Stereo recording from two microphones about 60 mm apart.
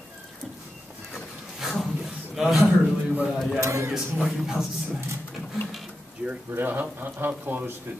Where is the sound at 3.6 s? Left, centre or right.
Right.